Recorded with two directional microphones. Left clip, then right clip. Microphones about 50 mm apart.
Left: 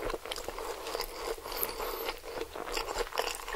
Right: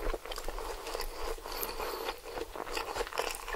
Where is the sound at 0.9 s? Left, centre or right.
Centre.